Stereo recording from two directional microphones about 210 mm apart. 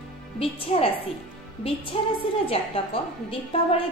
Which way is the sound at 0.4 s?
25° left (ahead or behind).